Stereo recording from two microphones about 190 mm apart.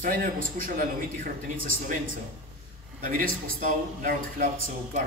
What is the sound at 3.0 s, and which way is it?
A man's voice, 50° right (ahead or behind).